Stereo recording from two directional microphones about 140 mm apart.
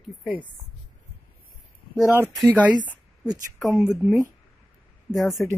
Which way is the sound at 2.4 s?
10° right (ahead or behind).